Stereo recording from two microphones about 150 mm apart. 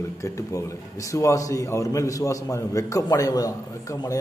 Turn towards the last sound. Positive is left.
turn(degrees=20)  # may be behind; listen again after turning